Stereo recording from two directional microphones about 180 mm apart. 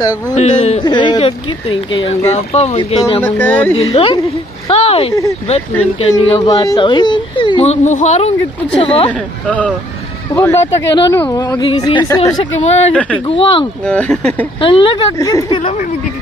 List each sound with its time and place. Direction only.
0.3 s speech: 40° left (ahead or behind)
0.8 s speech: 25° left (ahead or behind)
3.2 s speech: 10° left (ahead or behind)
3.9 s speech: 30° left (ahead or behind)
6.5 s speech: 20° left (ahead or behind)
10.3 s speech: 15° left (ahead or behind)
12.6 s speech: 35° left (ahead or behind)
13.8 s speech: 5° left (ahead or behind)
14.6 s speech: 30° left (ahead or behind)
15.1 s speech: 15° left (ahead or behind)